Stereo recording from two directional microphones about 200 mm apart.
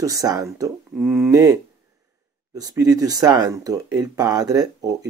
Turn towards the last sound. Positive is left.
turn(degrees=-20)  # may be behind; listen again after turning